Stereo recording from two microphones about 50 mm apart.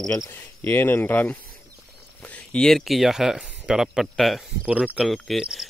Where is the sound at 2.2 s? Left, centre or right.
Left.